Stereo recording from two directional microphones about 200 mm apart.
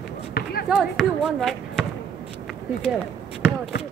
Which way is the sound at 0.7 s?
Centre (ahead or behind).